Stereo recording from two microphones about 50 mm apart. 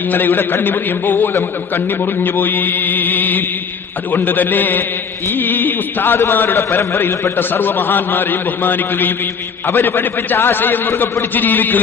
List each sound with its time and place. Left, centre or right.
0.1 s mantra: left
6.1 s a man's voice: left
7.3 s a man's voice: left
9.7 s a man's voice: left
11.3 s mantra: left